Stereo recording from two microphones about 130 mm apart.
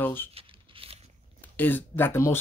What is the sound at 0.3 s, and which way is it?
Tearing, 45° right (ahead or behind).